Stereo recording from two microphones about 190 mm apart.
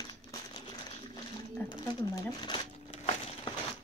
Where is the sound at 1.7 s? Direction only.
25° left (ahead or behind).